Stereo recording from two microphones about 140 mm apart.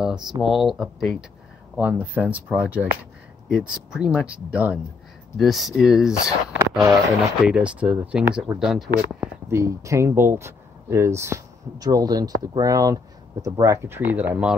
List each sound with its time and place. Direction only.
0.0 s a sound: 5° right (ahead or behind)
0.4 s speech: centre (ahead or behind)
1.8 s speech: 10° right (ahead or behind)
9.5 s speech: 20° right (ahead or behind)